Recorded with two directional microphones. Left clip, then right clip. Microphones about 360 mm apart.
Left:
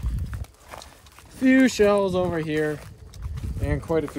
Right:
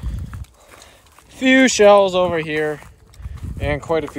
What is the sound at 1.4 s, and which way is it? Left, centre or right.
Speech, centre.